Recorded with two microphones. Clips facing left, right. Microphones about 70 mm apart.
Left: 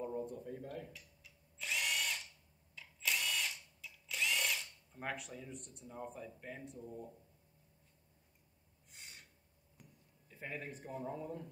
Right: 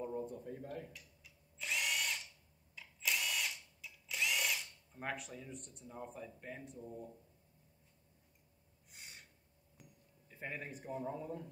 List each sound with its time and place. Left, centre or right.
0.0 s drill: centre
9.8 s a sound: centre
10.3 s a man's voice: right
11.1 s speech: centre